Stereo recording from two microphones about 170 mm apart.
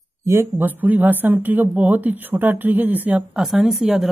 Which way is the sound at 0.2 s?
15° right (ahead or behind).